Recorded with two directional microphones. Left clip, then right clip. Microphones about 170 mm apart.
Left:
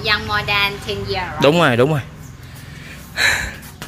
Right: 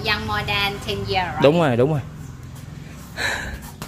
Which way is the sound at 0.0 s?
90° right.